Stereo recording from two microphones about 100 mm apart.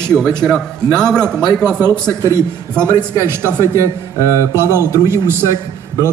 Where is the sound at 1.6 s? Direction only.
20° right (ahead or behind).